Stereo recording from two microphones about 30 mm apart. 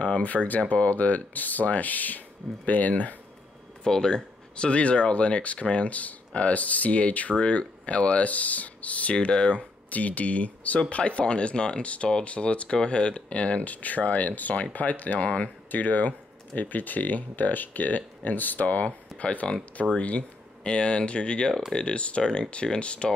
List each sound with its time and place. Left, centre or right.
0.2 s speech: left
3.8 s speech: left
7.3 s speech: left
10.9 s speech: left
12.6 s speech: left
15.1 s speech: left
15.7 s speech: left
20.6 s speech: left